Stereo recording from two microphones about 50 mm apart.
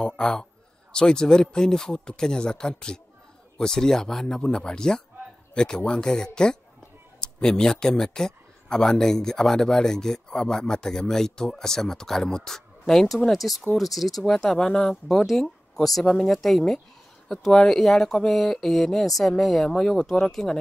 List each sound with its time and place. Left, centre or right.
0.0 s speech: centre